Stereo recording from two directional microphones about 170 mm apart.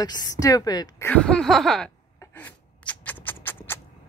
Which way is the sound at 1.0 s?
5° left (ahead or behind).